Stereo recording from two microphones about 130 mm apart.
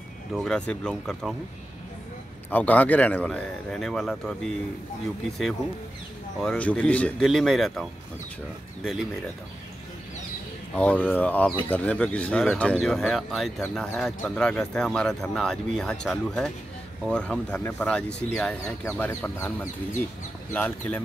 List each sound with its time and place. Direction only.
0.3 s speech: 5° left (ahead or behind)
2.5 s speech: 10° left (ahead or behind)
6.4 s speech: 10° left (ahead or behind)
10.7 s speech: 10° left (ahead or behind)